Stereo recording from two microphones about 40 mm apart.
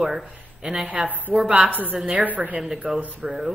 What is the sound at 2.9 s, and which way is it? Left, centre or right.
Speech, right.